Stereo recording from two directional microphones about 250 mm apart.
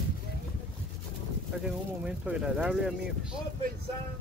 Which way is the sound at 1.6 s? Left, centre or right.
Centre.